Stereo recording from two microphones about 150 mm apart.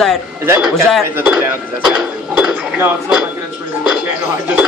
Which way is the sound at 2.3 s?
5° right (ahead or behind).